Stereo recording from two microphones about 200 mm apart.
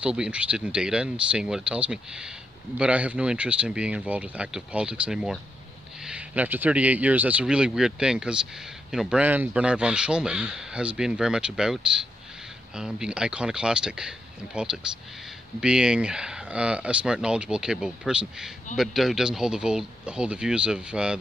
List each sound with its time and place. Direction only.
0.0 s speech: 5° right (ahead or behind)